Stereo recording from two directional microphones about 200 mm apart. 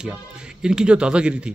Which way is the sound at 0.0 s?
5° right (ahead or behind).